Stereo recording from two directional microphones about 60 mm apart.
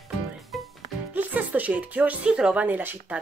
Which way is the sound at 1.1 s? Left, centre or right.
Right.